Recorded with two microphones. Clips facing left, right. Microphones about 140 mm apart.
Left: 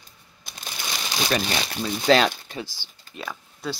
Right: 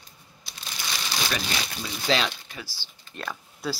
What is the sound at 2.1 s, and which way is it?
Speech, 50° left (ahead or behind).